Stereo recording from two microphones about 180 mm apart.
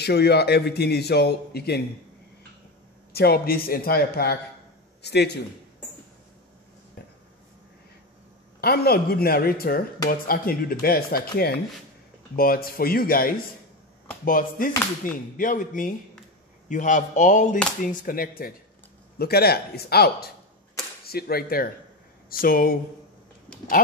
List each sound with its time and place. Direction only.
0.0 s speech: 65° left (ahead or behind)
3.1 s a man's voice: 60° left (ahead or behind)
8.5 s speech: 60° left (ahead or behind)